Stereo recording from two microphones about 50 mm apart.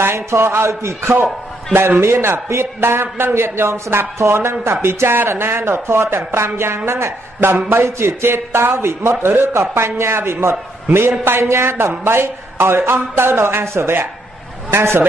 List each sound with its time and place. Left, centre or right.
0.0 s a man's voice: right
1.1 s a man's voice: right
7.8 s speech: right
8.3 s a man's voice: right